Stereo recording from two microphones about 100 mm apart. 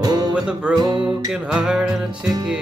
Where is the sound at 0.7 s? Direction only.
45° right (ahead or behind).